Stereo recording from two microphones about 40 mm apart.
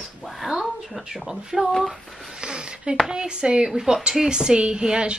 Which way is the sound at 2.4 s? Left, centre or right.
Right.